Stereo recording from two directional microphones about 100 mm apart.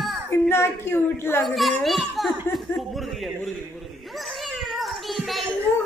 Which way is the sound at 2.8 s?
Centre (ahead or behind).